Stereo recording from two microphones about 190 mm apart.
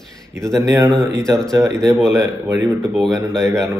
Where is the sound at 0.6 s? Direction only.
20° right (ahead or behind).